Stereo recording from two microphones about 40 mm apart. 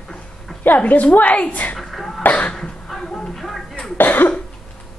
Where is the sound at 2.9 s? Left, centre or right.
Centre.